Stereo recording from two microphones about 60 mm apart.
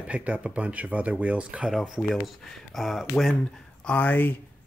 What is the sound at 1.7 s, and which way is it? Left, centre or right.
Speech, centre.